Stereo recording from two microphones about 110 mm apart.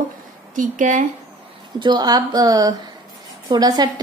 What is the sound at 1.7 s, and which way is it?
A woman's voice, 40° right (ahead or behind).